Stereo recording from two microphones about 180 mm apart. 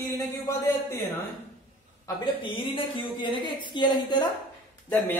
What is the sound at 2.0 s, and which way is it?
A woman's voice, 25° left (ahead or behind).